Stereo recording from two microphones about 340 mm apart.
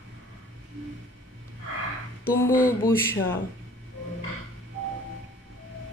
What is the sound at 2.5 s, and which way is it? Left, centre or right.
Mantra, left.